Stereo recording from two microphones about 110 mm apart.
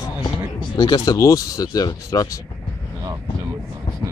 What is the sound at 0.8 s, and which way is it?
Speech, 40° left (ahead or behind).